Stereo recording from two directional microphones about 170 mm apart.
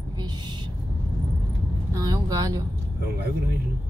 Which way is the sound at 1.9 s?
20° right (ahead or behind).